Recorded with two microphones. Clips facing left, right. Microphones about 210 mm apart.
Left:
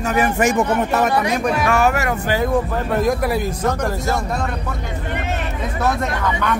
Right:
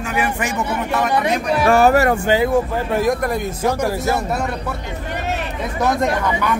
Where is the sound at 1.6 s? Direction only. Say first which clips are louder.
Right 9 dB; 35° right (ahead or behind).